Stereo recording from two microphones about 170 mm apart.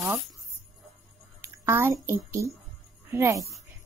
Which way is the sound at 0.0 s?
5° right (ahead or behind).